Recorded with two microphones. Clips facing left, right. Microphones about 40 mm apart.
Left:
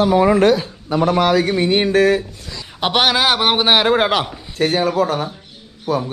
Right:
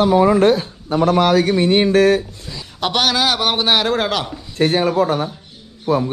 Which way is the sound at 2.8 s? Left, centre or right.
Centre.